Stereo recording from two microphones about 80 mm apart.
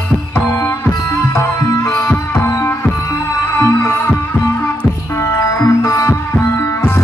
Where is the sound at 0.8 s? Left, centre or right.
Left.